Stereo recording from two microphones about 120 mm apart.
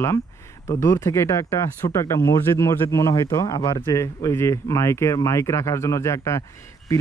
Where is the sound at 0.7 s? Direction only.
25° left (ahead or behind).